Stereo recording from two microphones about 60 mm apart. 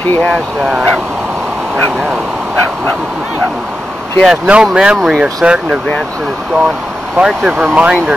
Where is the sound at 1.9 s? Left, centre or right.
Right.